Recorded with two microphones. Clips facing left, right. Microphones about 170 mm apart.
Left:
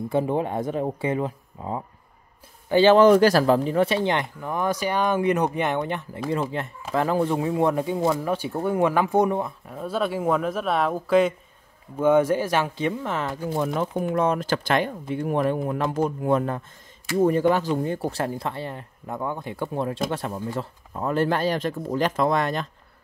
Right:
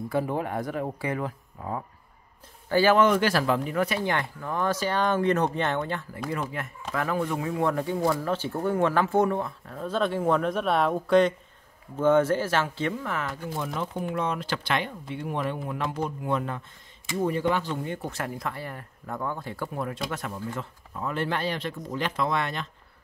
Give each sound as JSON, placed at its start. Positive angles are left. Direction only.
{"t": 0.1, "sound": "speech", "side_deg": 20}
{"t": 14.1, "sound": "speech", "side_deg": 45}